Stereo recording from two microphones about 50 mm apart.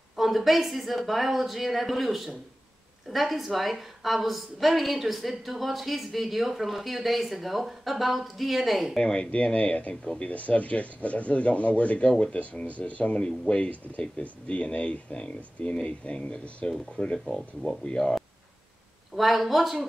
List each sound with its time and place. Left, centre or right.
0.1 s a woman's voice: centre
8.9 s speech: centre
10.3 s speech: left; by 18.1 s centre
19.1 s a woman's voice: centre